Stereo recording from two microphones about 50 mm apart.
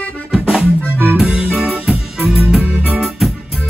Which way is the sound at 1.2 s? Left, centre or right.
Right.